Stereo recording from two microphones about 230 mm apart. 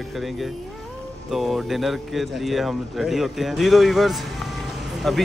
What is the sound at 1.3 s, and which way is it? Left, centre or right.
Speech, centre.